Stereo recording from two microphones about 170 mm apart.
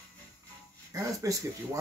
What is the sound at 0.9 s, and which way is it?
Speech, 20° right (ahead or behind).